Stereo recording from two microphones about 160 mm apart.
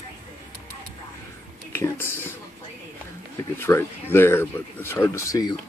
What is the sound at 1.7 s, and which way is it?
Whispering, 15° left (ahead or behind).